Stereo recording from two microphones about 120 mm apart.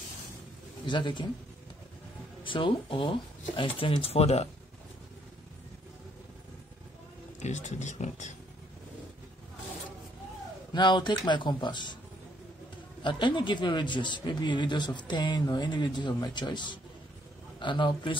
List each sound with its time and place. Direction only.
0.8 s speech: 40° left (ahead or behind)
2.4 s speech: 45° left (ahead or behind); by 4.5 s 60° left (ahead or behind)
7.3 s speech: 75° left (ahead or behind)
10.7 s speech: 40° left (ahead or behind)
13.0 s speech: 40° left (ahead or behind)